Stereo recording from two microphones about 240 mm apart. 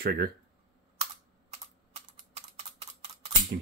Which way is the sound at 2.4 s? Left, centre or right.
Right.